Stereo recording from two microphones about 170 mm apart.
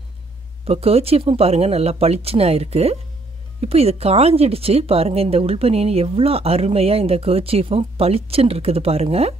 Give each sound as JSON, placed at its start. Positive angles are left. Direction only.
{"t": 0.7, "sound": "speech", "side_deg": -35}